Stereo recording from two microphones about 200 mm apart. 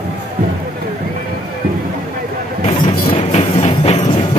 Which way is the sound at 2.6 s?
25° left (ahead or behind).